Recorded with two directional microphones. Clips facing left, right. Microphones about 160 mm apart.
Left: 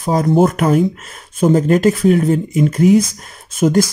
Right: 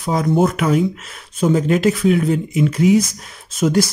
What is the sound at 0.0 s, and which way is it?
Speech, 45° left (ahead or behind).